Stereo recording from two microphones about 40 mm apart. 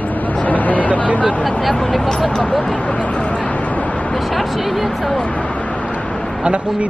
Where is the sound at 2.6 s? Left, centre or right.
Left.